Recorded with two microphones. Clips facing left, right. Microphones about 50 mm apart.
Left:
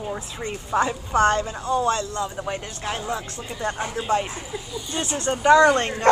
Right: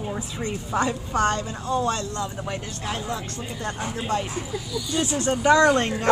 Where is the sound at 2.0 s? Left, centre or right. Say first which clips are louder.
Left 2 dB; centre.